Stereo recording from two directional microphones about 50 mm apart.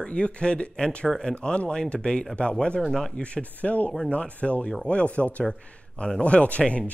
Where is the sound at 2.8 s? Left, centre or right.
Centre.